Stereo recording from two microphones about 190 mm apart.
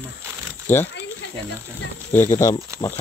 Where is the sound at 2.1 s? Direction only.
10° left (ahead or behind).